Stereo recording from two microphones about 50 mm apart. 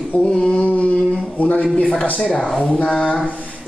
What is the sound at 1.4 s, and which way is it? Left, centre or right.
Speech, left.